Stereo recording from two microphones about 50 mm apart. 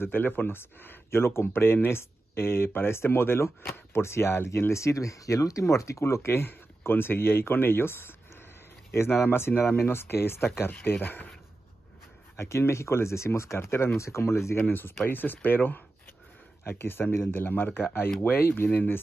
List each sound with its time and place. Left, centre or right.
0.0 s speech: left
10.9 s speech: left
12.4 s speech: left
13.9 s speech: left
14.6 s speech: left
16.6 s speech: left